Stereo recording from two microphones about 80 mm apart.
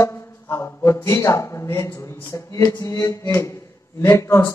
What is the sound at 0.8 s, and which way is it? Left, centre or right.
Speech, left.